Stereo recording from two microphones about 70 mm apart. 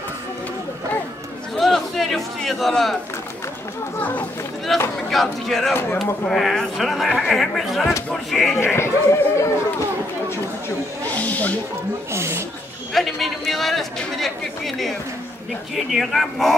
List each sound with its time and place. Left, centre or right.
1.6 s a sound: centre
4.0 s speech: left
4.7 s speech: centre
8.5 s speech: left
11.1 s speech: left
12.1 s speech: right
12.9 s speech: centre
15.7 s speech: centre